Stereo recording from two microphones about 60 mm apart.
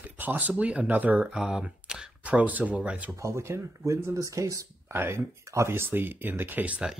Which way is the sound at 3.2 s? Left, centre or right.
Right.